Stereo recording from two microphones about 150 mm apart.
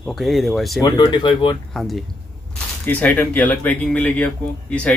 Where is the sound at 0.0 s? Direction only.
Centre (ahead or behind).